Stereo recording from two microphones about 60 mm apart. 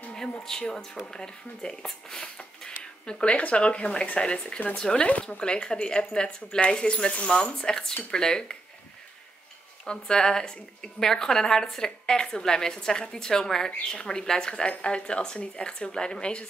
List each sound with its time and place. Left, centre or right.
0.1 s a woman's voice: centre
5.0 s a woman's voice: left
9.8 s a woman's voice: centre